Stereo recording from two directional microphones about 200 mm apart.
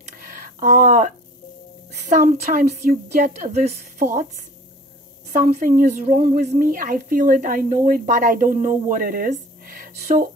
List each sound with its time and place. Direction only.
0.0 s a sound: 40° right (ahead or behind)
2.0 s a woman's voice: 40° right (ahead or behind)
5.3 s a woman's voice: 40° right (ahead or behind)